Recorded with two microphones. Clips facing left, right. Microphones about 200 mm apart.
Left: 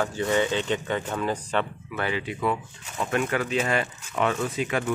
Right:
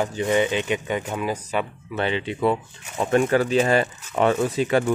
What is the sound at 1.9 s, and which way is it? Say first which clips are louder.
Speech: right 4 dB; 25° right (ahead or behind).